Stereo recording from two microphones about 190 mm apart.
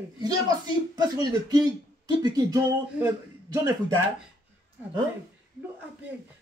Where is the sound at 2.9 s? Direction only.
15° right (ahead or behind).